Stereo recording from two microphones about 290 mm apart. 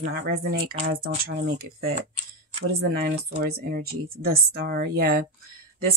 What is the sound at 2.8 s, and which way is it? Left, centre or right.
Speech, right.